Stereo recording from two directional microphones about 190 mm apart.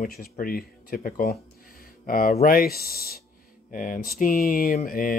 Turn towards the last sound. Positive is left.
turn(degrees=45)  # may be behind; listen again after turning